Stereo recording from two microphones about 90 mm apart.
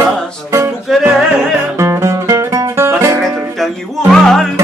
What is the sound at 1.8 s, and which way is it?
Music, 35° right (ahead or behind).